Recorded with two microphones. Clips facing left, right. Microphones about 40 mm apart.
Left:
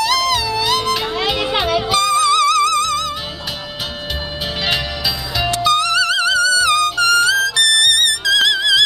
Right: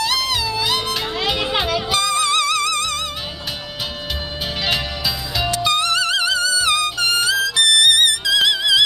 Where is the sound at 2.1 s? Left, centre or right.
Right.